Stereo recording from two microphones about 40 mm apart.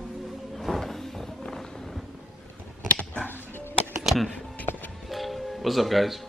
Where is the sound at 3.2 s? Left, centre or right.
Left.